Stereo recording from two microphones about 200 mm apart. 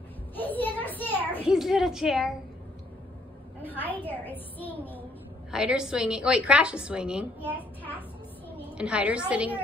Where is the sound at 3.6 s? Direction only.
10° left (ahead or behind).